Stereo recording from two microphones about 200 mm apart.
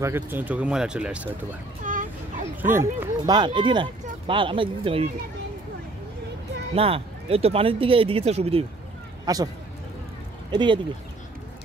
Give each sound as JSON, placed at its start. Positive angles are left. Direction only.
{"t": 0.0, "sound": "speech", "side_deg": -10}
{"t": 1.8, "sound": "a sound", "side_deg": -40}
{"t": 2.7, "sound": "speech", "side_deg": -15}
{"t": 6.7, "sound": "speech", "side_deg": -30}
{"t": 9.2, "sound": "speech", "side_deg": -20}
{"t": 10.5, "sound": "speech", "side_deg": -25}